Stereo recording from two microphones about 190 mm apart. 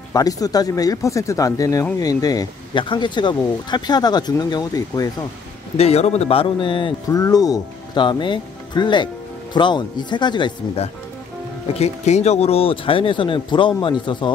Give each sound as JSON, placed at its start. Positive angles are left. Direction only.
{"t": 0.1, "sound": "speech", "side_deg": 20}
{"t": 5.8, "sound": "speech", "side_deg": 35}
{"t": 11.8, "sound": "speech", "side_deg": 35}